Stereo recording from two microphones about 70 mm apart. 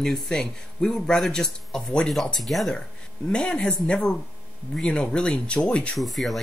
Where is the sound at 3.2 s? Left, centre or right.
Centre.